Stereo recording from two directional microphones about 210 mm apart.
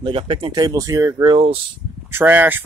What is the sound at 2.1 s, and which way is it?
Speech, 10° right (ahead or behind).